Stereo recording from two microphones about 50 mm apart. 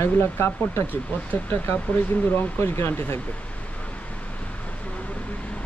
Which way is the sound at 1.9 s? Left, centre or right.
Left.